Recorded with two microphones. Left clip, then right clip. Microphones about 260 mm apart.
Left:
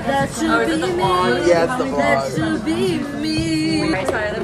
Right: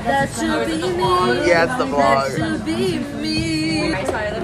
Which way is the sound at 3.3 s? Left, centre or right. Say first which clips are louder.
Left 1 dB; left.